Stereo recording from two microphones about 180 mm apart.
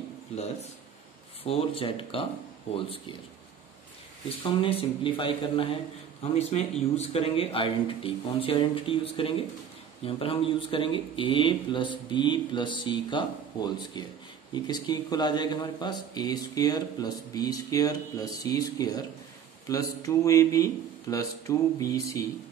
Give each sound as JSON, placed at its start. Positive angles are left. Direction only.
{"t": 1.4, "sound": "a man's voice", "side_deg": 30}
{"t": 4.4, "sound": "a man's voice", "side_deg": 30}